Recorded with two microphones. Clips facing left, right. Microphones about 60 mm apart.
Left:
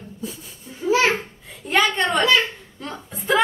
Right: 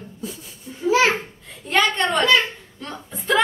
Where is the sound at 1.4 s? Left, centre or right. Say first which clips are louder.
Even; centre.